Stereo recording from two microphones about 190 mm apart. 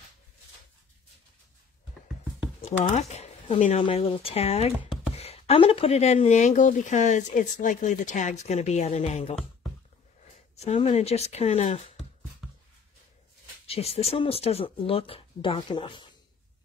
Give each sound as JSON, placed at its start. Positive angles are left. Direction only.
{"t": 2.6, "sound": "speech", "side_deg": 35}
{"t": 10.5, "sound": "speech", "side_deg": 35}
{"t": 13.7, "sound": "speech", "side_deg": 30}